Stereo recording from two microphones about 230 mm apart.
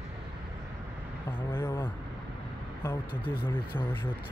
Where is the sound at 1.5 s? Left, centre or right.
Centre.